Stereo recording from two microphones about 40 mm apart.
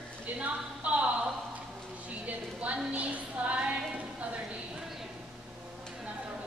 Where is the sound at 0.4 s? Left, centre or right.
Right.